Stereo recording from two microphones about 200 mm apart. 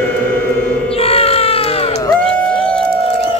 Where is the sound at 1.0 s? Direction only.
30° left (ahead or behind).